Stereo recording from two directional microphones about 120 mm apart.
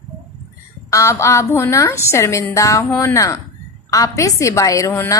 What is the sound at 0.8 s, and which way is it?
A woman's voice, 25° left (ahead or behind).